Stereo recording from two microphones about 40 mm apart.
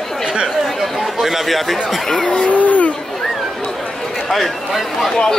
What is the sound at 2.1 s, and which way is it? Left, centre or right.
Speech, centre.